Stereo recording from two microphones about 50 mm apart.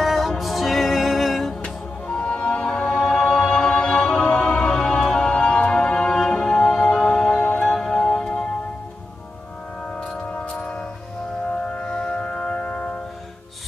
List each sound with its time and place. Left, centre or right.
0.0 s music: centre
1.6 s music: centre
10.0 s music: left